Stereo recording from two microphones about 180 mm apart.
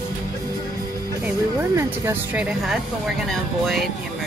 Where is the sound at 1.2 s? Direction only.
10° right (ahead or behind).